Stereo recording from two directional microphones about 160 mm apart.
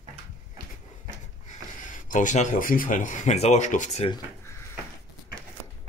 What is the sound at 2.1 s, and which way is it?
Speech, 50° left (ahead or behind).